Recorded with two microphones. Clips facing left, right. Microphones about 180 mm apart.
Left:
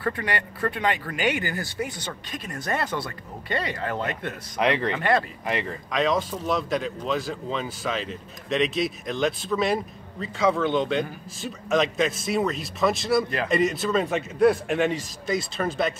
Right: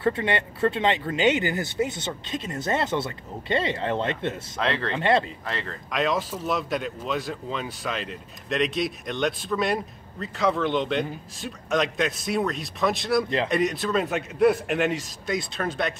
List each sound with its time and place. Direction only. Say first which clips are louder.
0.0 s speech: right 4 dB; 25° right (ahead or behind)
4.6 s speech: left 5 dB; 15° left (ahead or behind)
4.9 s speech: right 1 dB; 25° right (ahead or behind)
5.4 s speech: left 5 dB; 15° left (ahead or behind)
5.9 s speech: left 1 dB; centre (ahead or behind)